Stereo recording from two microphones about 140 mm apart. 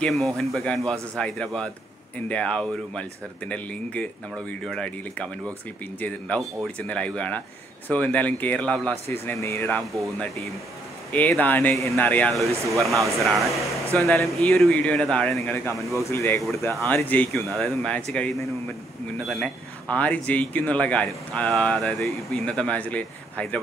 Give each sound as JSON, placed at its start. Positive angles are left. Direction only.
{"t": 0.0, "sound": "a man's voice", "side_deg": 0}
{"t": 11.1, "sound": "a man's voice", "side_deg": 10}
{"t": 17.3, "sound": "a man's voice", "side_deg": 0}